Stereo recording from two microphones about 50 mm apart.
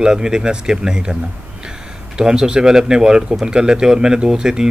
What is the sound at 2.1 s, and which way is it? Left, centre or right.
Speech, centre.